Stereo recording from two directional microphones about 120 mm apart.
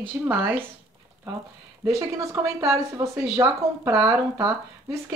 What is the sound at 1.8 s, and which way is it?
Speech, 25° right (ahead or behind).